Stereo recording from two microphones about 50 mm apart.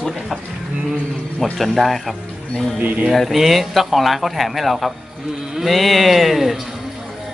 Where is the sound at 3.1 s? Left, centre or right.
Centre.